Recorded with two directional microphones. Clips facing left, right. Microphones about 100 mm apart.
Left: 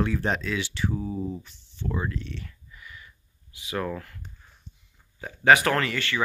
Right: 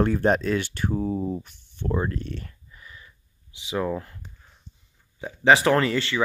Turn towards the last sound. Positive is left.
turn(degrees=-25)  # may be behind; listen again after turning